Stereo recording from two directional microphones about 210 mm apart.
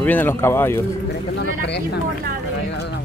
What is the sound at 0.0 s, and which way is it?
Speech, 10° left (ahead or behind).